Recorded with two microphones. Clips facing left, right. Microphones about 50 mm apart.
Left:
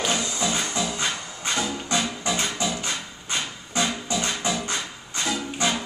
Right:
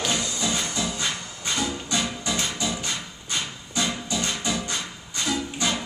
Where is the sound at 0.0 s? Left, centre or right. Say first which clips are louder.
Left 1 dB; left.